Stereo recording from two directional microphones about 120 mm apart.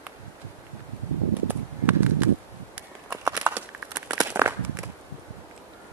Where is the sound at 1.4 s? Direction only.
15° right (ahead or behind).